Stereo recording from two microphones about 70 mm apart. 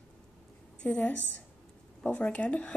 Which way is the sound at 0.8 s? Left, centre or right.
Left.